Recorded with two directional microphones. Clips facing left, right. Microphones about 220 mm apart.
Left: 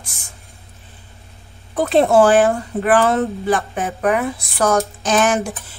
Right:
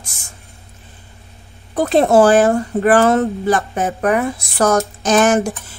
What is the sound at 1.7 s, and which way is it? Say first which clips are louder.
Speech: right 1 dB; 40° right (ahead or behind).